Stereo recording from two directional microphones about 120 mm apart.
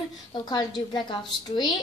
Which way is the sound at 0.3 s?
40° left (ahead or behind).